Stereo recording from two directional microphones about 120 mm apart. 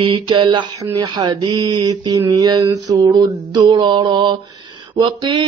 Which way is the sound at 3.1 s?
30° right (ahead or behind).